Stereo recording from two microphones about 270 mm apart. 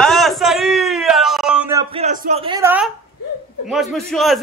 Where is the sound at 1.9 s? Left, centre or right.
Right.